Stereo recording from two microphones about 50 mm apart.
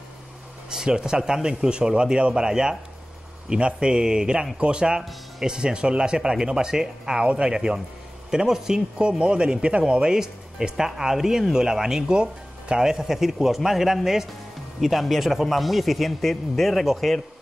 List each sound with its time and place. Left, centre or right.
0.7 s speech: centre
10.0 s a man's voice: centre